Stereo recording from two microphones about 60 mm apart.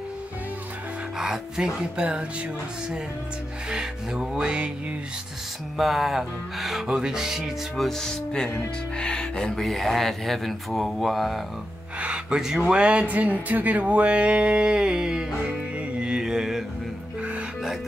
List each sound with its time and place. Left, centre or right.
1.2 s speech: centre
3.7 s speech: centre
5.8 s speech: centre
7.7 s speech: centre
12.0 s a sound: centre
12.4 s speech: centre
15.4 s music: centre